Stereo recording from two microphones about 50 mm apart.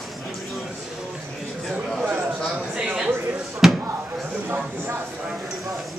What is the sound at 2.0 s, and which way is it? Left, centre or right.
Speech, right.